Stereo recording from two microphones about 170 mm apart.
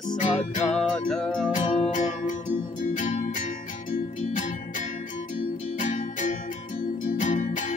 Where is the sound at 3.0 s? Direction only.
45° left (ahead or behind).